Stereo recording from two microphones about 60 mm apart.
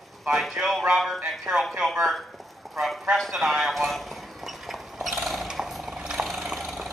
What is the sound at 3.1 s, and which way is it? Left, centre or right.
Clip-clop, centre.